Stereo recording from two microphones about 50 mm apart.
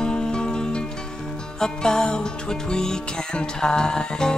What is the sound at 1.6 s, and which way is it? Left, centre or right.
Music, centre.